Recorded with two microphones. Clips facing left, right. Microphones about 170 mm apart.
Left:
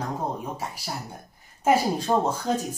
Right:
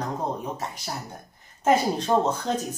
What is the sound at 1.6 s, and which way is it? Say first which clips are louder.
Speech: even; 10° left (ahead or behind).